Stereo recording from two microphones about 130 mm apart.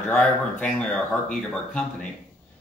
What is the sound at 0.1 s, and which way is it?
Speech, 10° left (ahead or behind).